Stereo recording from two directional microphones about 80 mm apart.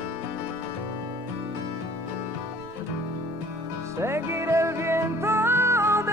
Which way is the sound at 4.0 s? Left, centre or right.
Right.